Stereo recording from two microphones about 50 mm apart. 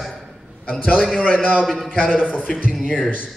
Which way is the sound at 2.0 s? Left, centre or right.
Right.